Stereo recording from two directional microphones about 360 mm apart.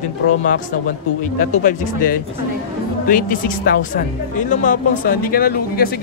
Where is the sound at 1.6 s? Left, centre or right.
Left.